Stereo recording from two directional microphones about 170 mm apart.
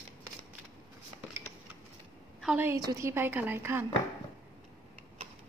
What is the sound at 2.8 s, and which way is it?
A woman's voice, 15° right (ahead or behind).